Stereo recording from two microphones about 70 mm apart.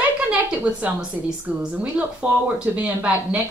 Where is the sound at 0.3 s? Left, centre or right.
Centre.